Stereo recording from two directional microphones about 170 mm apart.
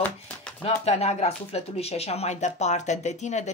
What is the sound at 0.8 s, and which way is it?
Speech, 40° left (ahead or behind).